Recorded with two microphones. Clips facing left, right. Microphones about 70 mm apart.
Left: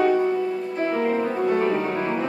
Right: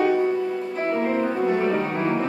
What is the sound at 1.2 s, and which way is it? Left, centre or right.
Music, centre.